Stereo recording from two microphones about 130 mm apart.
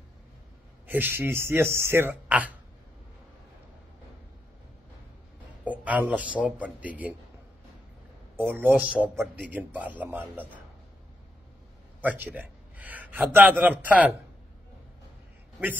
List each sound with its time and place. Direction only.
0.8 s speech: 15° right (ahead or behind)
5.6 s speech: 10° right (ahead or behind)
8.4 s speech: 15° right (ahead or behind)
12.0 s a sound: 10° right (ahead or behind)
13.3 s speech: 15° right (ahead or behind)